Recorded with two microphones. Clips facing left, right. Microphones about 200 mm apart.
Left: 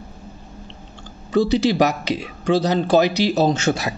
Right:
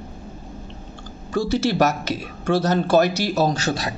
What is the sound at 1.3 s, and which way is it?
A man's voice, 15° left (ahead or behind).